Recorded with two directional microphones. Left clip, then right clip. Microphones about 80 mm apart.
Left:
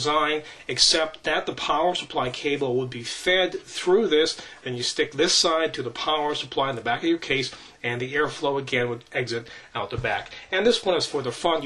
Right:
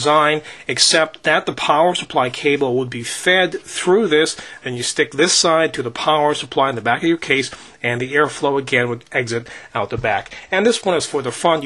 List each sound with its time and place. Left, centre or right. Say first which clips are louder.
0.0 s speech: right 8 dB; right